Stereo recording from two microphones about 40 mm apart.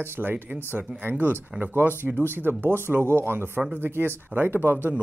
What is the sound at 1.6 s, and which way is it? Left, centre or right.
Speech, right.